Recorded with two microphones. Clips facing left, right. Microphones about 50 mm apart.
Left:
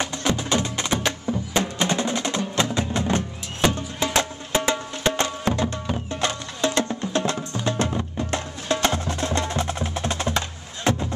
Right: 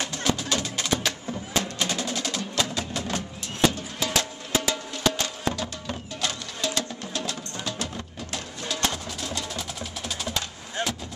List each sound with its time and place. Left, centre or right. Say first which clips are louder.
0.0 s music: left 3 dB; left
8.9 s wood block: left 8 dB; left